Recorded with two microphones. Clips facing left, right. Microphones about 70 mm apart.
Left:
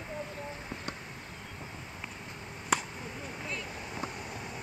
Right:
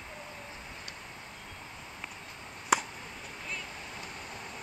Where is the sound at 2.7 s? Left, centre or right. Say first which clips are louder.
Right 3 dB; centre.